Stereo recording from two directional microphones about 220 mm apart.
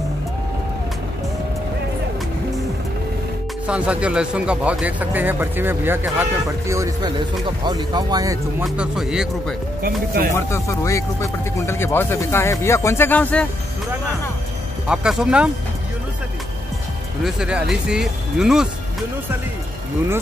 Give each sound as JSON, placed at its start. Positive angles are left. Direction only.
{"t": 3.6, "sound": "speech", "side_deg": -5}
{"t": 7.4, "sound": "speech", "side_deg": -20}
{"t": 8.6, "sound": "speech", "side_deg": 0}
{"t": 9.8, "sound": "speech", "side_deg": -40}
{"t": 10.3, "sound": "speech", "side_deg": 10}
{"t": 14.9, "sound": "speech", "side_deg": -5}
{"t": 17.2, "sound": "speech", "side_deg": -5}